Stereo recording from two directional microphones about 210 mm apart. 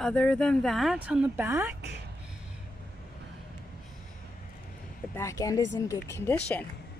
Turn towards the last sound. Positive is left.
turn(degrees=10)  # may be behind; listen again after turning